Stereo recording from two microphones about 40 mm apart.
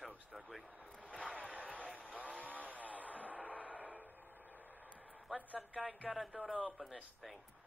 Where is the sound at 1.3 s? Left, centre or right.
Right.